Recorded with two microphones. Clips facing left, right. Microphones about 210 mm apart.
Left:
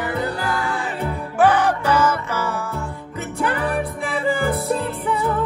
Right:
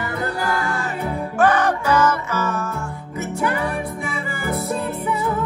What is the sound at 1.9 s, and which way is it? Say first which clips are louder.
Music: right 1 dB; 10° left (ahead or behind).